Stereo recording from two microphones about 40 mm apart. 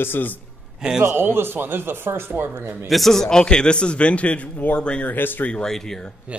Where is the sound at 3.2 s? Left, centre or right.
Left.